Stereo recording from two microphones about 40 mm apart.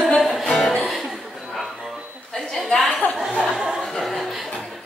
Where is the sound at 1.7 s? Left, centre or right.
Centre.